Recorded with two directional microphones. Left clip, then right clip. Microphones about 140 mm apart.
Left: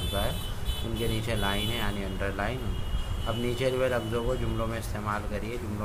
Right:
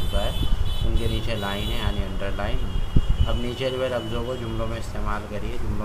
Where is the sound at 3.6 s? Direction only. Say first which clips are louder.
Right 2 dB; 35° left (ahead or behind).